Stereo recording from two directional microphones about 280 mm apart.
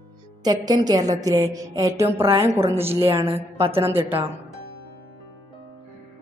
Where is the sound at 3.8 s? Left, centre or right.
Centre.